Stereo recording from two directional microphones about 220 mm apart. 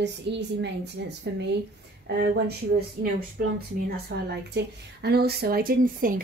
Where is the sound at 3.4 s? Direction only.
45° right (ahead or behind).